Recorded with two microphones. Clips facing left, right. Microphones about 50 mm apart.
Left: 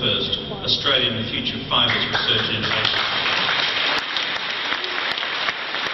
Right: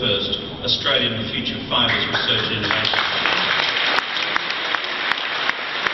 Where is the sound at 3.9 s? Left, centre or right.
Right.